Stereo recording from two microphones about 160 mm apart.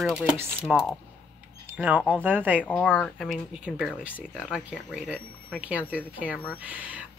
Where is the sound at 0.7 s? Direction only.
5° right (ahead or behind).